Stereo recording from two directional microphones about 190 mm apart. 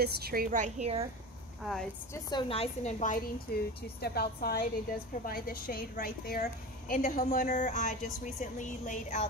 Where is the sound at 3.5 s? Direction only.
55° left (ahead or behind).